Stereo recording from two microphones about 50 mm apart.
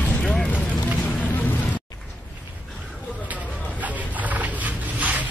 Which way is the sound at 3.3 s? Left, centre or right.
Right.